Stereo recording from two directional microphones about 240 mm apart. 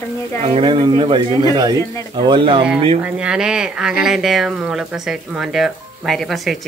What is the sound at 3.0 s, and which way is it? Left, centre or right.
Speech, centre.